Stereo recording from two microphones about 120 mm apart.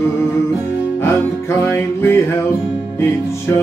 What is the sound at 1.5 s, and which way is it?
Music, 20° left (ahead or behind).